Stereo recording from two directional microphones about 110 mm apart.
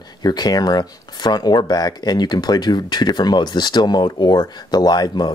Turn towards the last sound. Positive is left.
turn(degrees=40)  # may be behind; listen again after turning